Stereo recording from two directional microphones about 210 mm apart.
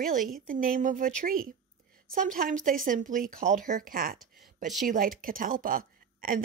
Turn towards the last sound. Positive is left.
turn(degrees=-40)  # may be behind; listen again after turning